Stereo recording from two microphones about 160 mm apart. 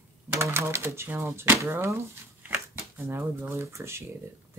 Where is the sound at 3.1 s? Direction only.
15° right (ahead or behind).